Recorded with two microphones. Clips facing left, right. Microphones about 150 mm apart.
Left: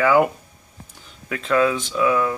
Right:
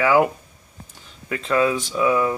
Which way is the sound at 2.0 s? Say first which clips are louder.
Even; 15° right (ahead or behind).